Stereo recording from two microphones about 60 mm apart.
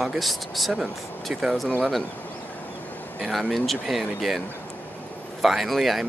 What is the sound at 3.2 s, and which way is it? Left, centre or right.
Speech, centre.